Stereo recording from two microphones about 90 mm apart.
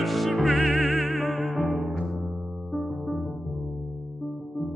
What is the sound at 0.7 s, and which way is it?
Music, 15° right (ahead or behind).